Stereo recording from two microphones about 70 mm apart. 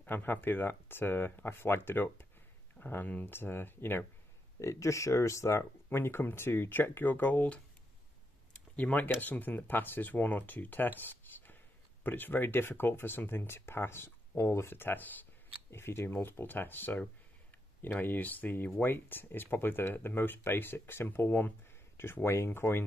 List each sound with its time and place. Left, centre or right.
0.0 s speech: left
4.6 s speech: left
5.9 s speech: left